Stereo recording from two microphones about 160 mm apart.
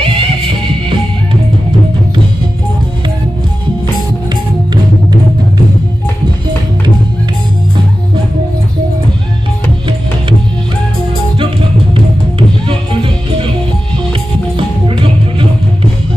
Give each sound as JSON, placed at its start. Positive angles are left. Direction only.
{"t": 0.0, "sound": "music", "side_deg": -35}
{"t": 11.9, "sound": "music", "side_deg": -35}
{"t": 14.6, "sound": "music", "side_deg": -30}